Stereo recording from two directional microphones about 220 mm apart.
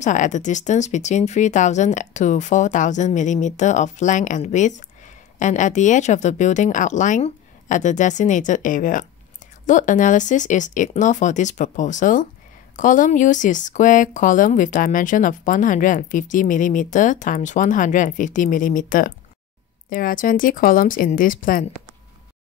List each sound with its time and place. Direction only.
0.0 s speech: 35° left (ahead or behind)